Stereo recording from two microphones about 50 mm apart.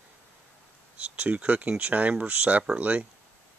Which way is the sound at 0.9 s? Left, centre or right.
Right.